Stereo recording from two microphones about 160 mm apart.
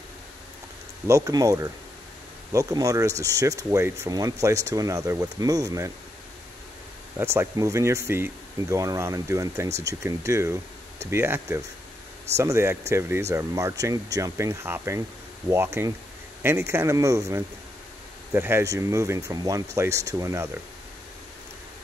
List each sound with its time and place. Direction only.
1.0 s speech: 20° right (ahead or behind)
7.2 s speech: 15° right (ahead or behind)